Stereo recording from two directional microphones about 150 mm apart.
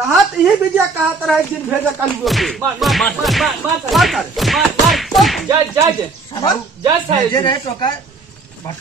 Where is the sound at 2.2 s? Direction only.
Centre (ahead or behind).